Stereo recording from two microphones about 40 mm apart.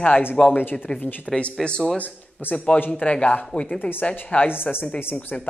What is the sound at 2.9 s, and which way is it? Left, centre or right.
Speech, left.